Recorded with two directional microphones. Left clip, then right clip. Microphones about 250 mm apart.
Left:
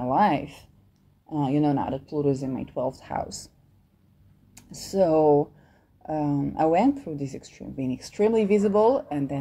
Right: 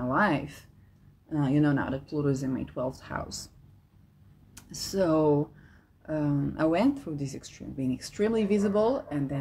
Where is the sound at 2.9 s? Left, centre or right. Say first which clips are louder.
Left 6 dB; right.